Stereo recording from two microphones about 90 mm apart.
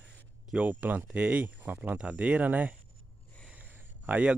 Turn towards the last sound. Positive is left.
turn(degrees=-15)  # may be behind; listen again after turning